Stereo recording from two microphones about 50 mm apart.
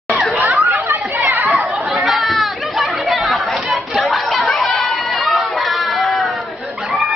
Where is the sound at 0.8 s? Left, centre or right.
Right.